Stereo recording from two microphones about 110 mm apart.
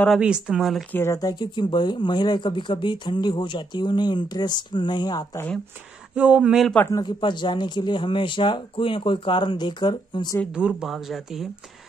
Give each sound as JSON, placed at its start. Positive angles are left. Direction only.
{"t": 0.2, "sound": "speech", "side_deg": -5}
{"t": 0.9, "sound": "speech", "side_deg": 20}
{"t": 1.2, "sound": "speech", "side_deg": 40}
{"t": 6.1, "sound": "a man's voice", "side_deg": -10}
{"t": 6.9, "sound": "speech", "side_deg": 40}
{"t": 10.5, "sound": "speech", "side_deg": -5}